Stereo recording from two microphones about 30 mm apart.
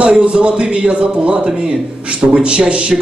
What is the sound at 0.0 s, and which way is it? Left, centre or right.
A man's voice, right.